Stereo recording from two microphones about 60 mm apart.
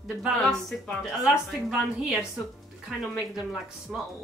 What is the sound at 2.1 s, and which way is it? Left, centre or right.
Speech, centre.